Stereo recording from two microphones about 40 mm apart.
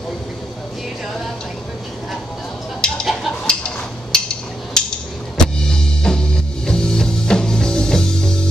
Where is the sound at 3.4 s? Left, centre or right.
Left.